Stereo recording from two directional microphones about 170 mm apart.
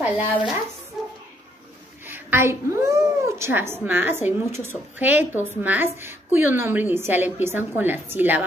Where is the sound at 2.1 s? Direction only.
10° right (ahead or behind).